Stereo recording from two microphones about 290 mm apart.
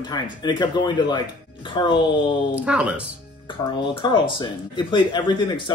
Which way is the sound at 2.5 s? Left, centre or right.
Centre.